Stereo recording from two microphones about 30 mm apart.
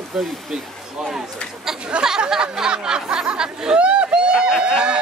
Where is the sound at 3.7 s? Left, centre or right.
Right.